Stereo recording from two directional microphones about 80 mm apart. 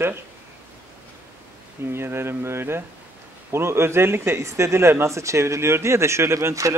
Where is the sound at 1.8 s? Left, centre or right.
Right.